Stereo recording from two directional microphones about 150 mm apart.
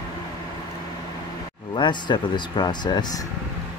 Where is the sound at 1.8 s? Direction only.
30° left (ahead or behind).